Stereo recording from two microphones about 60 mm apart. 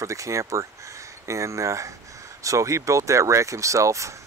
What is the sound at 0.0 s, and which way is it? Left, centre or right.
Speech, right.